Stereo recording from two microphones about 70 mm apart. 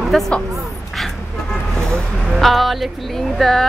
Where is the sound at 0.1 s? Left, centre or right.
Centre.